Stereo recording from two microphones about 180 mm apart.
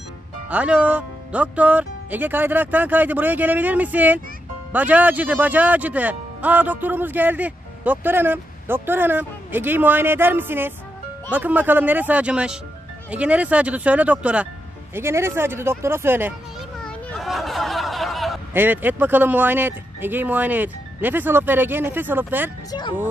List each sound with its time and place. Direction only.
0.5 s speech: 10° right (ahead or behind)
16.8 s a sound: centre (ahead or behind)
18.5 s speech: 10° right (ahead or behind)
22.7 s speech: 25° left (ahead or behind)